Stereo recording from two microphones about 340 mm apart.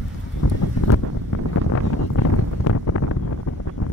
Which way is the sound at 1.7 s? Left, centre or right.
Left.